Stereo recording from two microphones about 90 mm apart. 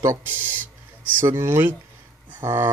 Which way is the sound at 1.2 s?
30° right (ahead or behind).